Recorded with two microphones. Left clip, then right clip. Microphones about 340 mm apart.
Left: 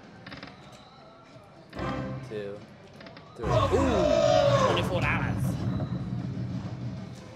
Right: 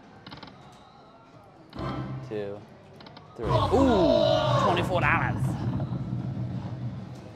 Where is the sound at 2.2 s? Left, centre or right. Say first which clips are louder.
Right 2 dB; right.